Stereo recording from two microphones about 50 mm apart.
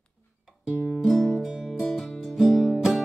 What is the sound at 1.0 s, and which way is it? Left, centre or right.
Music, centre.